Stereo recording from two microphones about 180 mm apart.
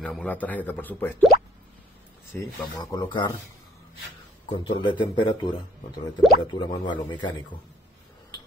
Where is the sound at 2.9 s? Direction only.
25° left (ahead or behind).